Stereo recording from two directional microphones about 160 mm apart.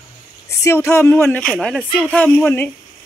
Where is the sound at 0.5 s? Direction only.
15° left (ahead or behind).